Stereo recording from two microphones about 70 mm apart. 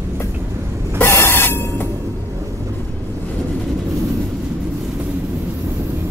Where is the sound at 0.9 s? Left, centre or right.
Left.